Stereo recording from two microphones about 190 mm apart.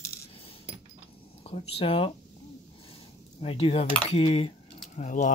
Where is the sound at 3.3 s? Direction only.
30° left (ahead or behind).